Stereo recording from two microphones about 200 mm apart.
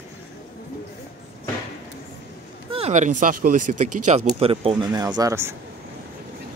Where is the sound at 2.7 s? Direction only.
35° right (ahead or behind); by 5.6 s 15° right (ahead or behind).